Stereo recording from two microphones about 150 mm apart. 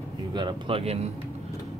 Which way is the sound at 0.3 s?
30° right (ahead or behind).